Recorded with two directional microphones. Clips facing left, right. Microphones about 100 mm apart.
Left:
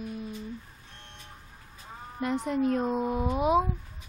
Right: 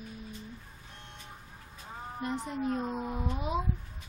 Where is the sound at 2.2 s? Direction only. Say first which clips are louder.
Left 7 dB; 75° left (ahead or behind).